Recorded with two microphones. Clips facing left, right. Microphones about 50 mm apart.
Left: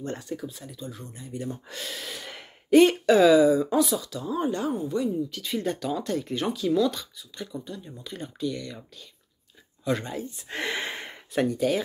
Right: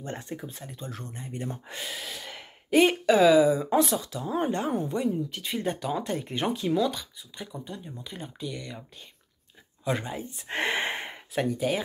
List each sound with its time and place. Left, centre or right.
0.0 s speech: right
1.8 s speech: centre
2.0 s speech: centre
3.7 s speech: right
6.8 s speech: centre
7.2 s speech: right
9.8 s speech: right
10.3 s speech: right
11.3 s speech: centre